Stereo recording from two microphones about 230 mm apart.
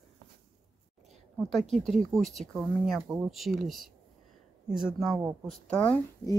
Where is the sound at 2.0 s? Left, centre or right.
Centre.